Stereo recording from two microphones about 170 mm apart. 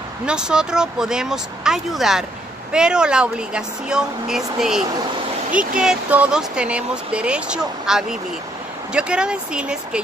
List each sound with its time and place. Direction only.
0.3 s speech: 5° right (ahead or behind)